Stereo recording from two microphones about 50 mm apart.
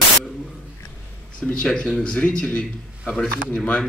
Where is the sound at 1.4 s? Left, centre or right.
Left.